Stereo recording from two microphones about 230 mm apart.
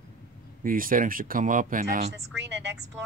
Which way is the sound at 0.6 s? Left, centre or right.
Right.